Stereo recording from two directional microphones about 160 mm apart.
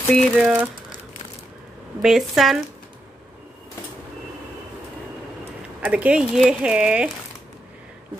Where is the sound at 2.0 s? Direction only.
5° right (ahead or behind).